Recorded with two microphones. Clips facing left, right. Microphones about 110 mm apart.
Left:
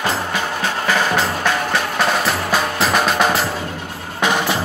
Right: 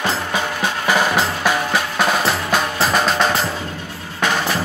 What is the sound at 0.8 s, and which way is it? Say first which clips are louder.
Music: right 1 dB; 10° right (ahead or behind).